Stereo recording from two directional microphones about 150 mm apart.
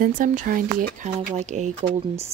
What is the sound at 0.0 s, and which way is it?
Speech, 60° right (ahead or behind).